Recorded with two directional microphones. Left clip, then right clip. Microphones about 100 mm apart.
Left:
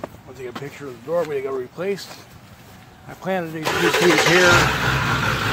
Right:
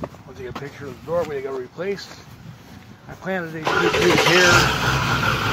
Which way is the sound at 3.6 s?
35° right (ahead or behind).